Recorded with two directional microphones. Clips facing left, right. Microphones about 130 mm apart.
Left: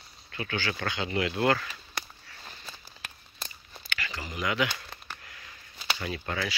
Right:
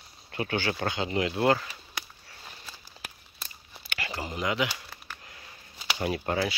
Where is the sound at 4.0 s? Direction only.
30° right (ahead or behind).